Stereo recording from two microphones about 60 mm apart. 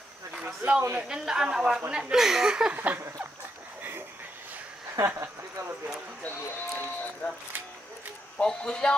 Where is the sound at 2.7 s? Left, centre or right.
Right.